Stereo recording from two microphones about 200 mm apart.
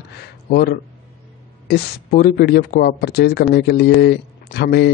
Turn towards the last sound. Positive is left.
turn(degrees=55)  # may be behind; listen again after turning